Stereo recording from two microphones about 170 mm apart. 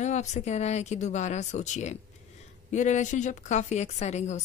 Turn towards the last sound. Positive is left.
turn(degrees=40)  # may be behind; listen again after turning